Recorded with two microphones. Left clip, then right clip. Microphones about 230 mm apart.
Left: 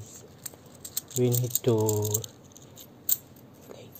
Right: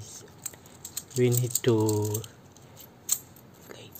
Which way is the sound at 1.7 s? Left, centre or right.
Right.